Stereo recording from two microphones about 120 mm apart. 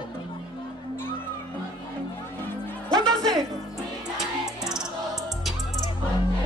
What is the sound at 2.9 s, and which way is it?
Music, 5° left (ahead or behind).